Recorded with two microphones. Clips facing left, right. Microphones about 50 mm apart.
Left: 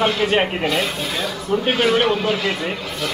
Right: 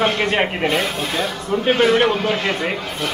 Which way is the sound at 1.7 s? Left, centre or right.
Right.